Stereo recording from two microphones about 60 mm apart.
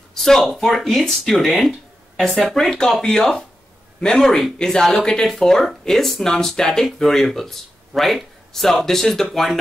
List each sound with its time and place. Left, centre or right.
0.1 s speech: centre
2.7 s speech: centre